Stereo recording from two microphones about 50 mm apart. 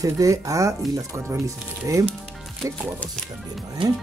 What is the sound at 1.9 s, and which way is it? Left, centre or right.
Speech, right.